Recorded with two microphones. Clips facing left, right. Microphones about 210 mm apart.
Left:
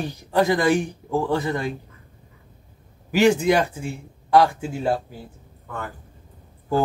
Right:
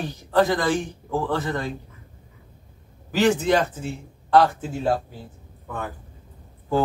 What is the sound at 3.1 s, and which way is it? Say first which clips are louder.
Speech: left 2 dB; 15° left (ahead or behind).